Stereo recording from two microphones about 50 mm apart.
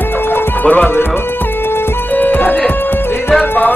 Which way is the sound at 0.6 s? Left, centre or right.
Left.